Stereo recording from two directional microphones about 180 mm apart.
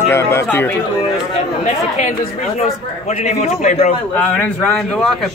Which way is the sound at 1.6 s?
40° left (ahead or behind).